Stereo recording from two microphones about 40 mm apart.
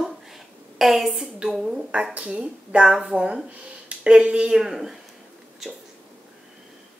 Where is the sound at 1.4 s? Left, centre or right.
Centre.